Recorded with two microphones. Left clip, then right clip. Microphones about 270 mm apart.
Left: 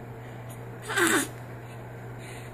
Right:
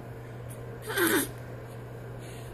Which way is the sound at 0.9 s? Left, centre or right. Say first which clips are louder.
Left 3 dB; centre.